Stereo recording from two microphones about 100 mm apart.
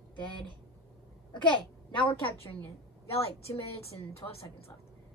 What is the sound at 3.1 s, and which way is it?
A woman's voice, 80° left.